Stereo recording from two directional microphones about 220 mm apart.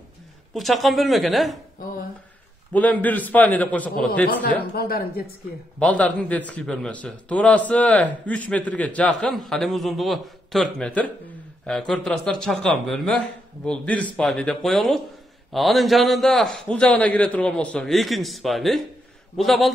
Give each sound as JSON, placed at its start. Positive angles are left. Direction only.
{"t": 0.5, "sound": "a man's voice", "side_deg": 0}
{"t": 2.7, "sound": "a man's voice", "side_deg": 5}
{"t": 4.7, "sound": "speech", "side_deg": 45}
{"t": 5.8, "sound": "a man's voice", "side_deg": 5}